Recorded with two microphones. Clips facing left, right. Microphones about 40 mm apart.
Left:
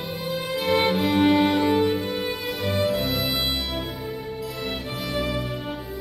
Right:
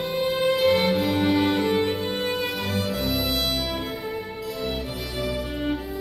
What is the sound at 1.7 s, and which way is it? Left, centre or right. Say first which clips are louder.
Music: left 2 dB; centre.